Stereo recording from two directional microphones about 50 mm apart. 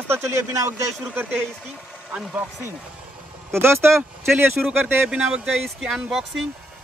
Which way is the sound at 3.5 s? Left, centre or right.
Right.